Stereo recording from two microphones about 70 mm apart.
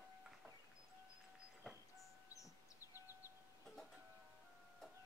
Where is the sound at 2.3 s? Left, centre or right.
Left.